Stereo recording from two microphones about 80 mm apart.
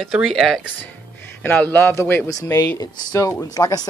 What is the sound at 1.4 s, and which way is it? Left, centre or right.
Speech, left.